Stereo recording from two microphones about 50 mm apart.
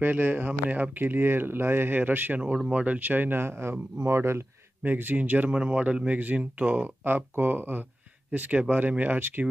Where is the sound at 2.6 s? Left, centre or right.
Right.